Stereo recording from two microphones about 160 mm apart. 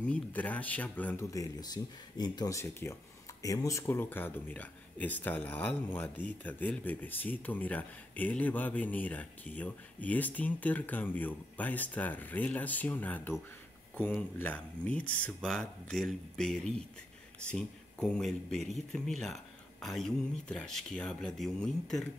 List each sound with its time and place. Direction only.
0.0 s speech: 10° left (ahead or behind)
1.3 s speech: 25° left (ahead or behind); by 22.0 s 5° left (ahead or behind)